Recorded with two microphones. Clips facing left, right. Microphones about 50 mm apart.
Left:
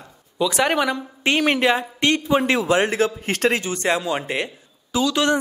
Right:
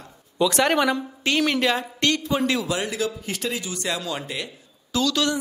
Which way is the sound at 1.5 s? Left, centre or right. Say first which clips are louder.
Left 4 dB; left.